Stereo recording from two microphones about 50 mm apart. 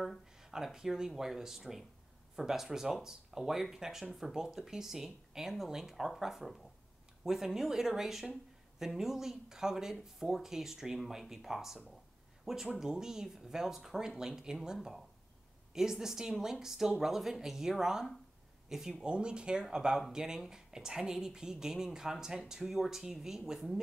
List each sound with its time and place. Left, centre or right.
0.4 s speech: centre
19.0 s speech: centre